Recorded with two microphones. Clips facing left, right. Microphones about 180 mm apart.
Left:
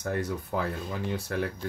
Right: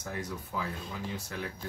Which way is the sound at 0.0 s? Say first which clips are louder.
Left 7 dB; 60° left (ahead or behind).